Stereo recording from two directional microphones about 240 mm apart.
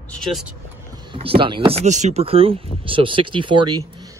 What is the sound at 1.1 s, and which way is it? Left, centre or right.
Speech, right.